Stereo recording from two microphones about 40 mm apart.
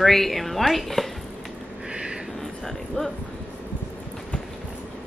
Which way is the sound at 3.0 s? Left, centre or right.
Left.